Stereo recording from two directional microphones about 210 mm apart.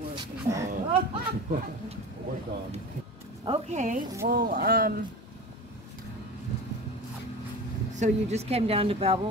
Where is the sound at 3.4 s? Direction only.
30° right (ahead or behind).